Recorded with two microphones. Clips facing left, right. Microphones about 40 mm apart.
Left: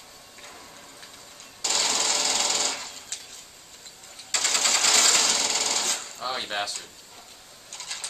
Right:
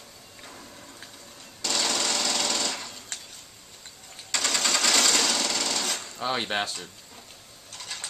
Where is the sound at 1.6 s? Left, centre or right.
Centre.